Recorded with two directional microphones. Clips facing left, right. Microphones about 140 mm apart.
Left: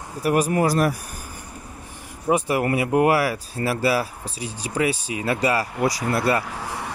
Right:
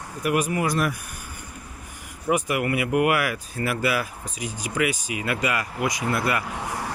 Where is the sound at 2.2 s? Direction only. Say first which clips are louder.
Left 3 dB; 30° left (ahead or behind).